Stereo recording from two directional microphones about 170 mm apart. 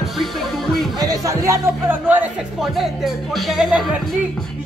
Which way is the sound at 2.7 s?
Centre (ahead or behind).